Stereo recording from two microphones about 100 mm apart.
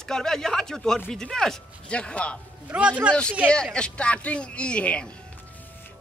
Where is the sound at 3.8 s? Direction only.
10° left (ahead or behind).